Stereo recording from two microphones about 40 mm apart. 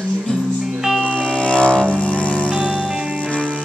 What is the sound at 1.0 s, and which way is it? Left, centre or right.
Music, left.